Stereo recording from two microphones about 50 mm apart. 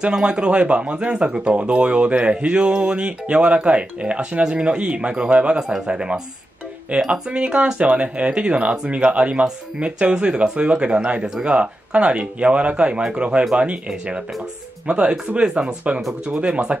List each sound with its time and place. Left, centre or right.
0.0 s speech: centre